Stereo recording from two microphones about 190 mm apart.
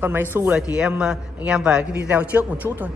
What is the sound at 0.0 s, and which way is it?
A woman's voice, 10° right (ahead or behind).